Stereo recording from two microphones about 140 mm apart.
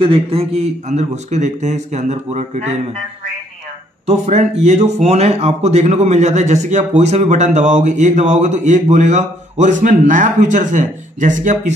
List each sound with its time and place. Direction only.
0.0 s a man's voice: 40° right (ahead or behind)
4.0 s speech: 50° right (ahead or behind)